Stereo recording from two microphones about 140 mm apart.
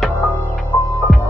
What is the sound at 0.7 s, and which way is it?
Hum, 15° left (ahead or behind).